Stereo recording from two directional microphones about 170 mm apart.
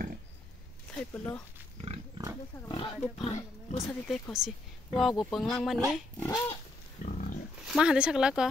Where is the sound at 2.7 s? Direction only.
25° left (ahead or behind).